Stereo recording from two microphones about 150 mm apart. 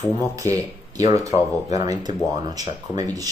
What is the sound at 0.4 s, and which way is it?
Speech, 25° right (ahead or behind).